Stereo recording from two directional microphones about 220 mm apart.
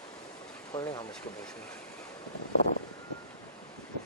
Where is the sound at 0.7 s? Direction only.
20° left (ahead or behind).